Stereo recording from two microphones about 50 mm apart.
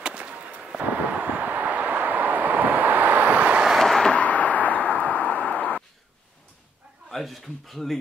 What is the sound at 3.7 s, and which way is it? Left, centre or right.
Vehicle, centre.